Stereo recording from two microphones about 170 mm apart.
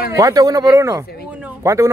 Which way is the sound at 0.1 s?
20° right (ahead or behind).